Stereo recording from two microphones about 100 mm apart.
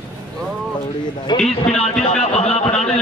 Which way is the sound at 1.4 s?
90° left.